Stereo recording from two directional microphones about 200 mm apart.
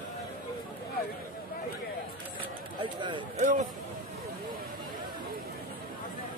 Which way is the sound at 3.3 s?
40° right (ahead or behind).